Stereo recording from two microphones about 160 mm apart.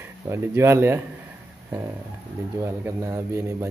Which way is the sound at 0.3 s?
15° right (ahead or behind).